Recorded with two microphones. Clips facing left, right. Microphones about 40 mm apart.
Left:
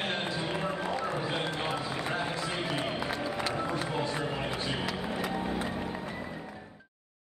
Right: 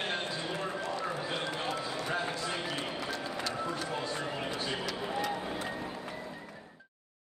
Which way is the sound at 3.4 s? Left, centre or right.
Left.